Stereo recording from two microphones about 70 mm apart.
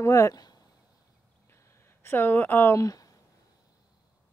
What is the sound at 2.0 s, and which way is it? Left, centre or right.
Speech, left.